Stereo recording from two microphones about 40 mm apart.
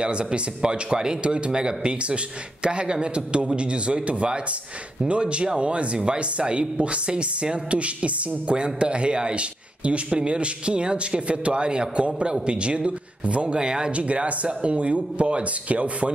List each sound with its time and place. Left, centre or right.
0.0 s a woman's voice: right